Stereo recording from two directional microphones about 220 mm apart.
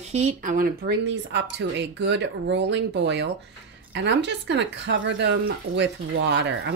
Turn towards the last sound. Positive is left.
turn(degrees=-55)  # may be behind; listen again after turning